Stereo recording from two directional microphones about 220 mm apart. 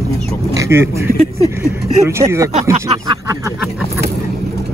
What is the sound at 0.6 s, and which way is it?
Speech, 10° right (ahead or behind).